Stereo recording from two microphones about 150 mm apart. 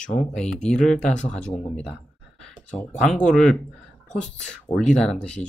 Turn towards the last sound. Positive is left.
turn(degrees=5)  # may be behind; listen again after turning